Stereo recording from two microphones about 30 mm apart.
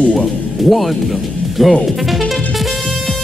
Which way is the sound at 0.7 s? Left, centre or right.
Centre.